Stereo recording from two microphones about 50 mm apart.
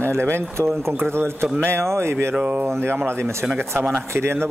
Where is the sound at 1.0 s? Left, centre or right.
Right.